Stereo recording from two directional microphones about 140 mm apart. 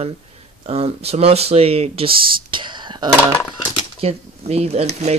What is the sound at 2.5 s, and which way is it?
Speech, 35° right (ahead or behind).